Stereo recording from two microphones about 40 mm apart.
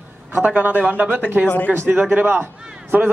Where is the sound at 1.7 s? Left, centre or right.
Right.